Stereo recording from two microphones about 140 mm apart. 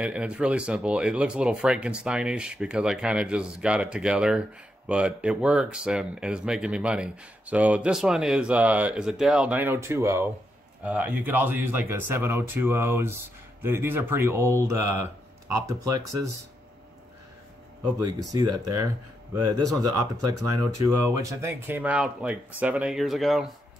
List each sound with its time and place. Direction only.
0.0 s speech: 10° right (ahead or behind)
10.8 s speech: 10° right (ahead or behind)
18.0 s speech: 25° right (ahead or behind); by 23.5 s centre (ahead or behind)